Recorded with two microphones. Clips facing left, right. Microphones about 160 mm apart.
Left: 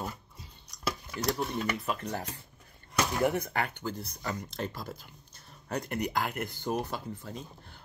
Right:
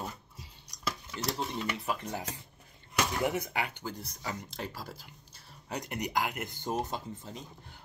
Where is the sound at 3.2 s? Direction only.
15° right (ahead or behind).